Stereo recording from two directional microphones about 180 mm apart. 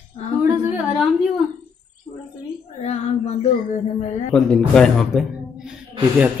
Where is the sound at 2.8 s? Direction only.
35° left (ahead or behind).